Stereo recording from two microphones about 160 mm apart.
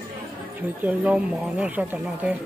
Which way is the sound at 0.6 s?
10° right (ahead or behind).